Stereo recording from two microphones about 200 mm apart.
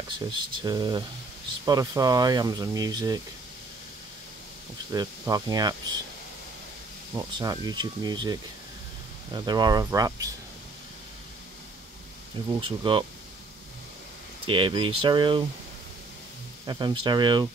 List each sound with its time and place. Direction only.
0.3 s speech: 20° right (ahead or behind)
4.9 s speech: 20° right (ahead or behind)
7.2 s speech: 20° right (ahead or behind)
12.4 s speech: 25° right (ahead or behind)
14.4 s speech: 25° right (ahead or behind)
16.6 s speech: 20° right (ahead or behind)